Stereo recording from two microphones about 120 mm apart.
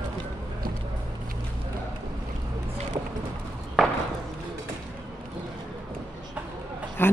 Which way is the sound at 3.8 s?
Centre (ahead or behind).